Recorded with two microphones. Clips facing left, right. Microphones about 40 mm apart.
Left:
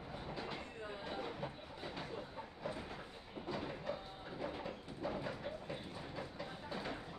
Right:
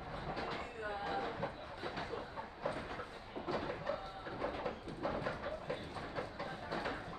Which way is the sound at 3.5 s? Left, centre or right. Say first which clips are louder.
Right 4 dB; right.